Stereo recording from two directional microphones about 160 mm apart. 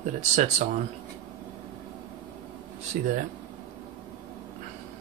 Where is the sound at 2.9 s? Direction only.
50° right (ahead or behind).